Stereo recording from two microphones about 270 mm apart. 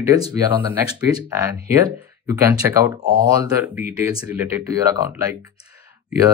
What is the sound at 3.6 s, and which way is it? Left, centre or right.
Speech, centre.